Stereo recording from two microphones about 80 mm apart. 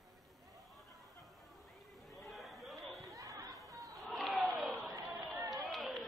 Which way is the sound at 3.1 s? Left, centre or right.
Right.